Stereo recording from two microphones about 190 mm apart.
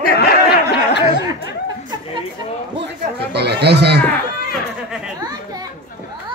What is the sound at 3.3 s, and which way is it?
Speech, 60° right (ahead or behind).